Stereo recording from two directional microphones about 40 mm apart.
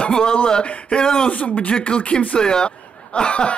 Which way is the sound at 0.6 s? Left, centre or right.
Left.